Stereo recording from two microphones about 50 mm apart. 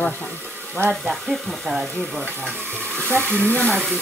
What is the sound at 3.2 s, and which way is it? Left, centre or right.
Speech, left.